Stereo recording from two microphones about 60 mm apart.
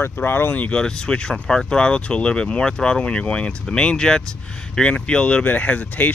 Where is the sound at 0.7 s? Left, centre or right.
Centre.